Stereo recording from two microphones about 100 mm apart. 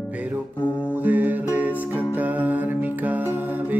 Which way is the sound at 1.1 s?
15° right (ahead or behind).